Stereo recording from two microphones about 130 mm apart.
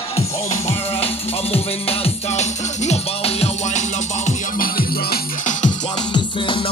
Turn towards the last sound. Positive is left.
turn(degrees=40)  # may be behind; listen again after turning